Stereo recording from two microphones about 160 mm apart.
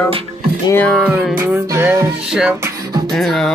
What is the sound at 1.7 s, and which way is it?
Music, 15° right (ahead or behind).